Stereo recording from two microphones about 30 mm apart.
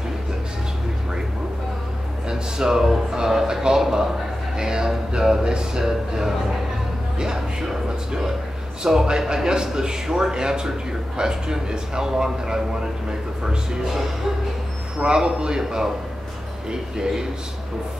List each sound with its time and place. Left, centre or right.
2.2 s speech: right
3.2 s music: centre
7.6 s speech: centre
8.8 s music: right
15.0 s music: right